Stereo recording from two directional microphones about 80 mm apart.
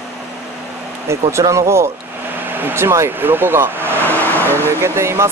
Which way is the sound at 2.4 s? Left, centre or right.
Right.